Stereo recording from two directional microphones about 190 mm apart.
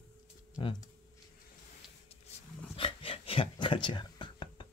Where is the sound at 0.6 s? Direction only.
25° left (ahead or behind).